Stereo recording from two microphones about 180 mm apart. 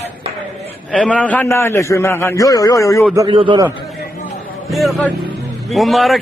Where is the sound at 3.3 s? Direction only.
25° right (ahead or behind).